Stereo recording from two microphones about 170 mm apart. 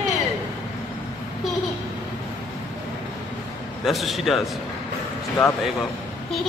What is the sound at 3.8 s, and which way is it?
Speech, centre (ahead or behind).